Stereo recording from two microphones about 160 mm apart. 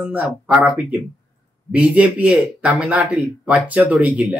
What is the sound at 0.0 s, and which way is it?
Speech, 10° right (ahead or behind).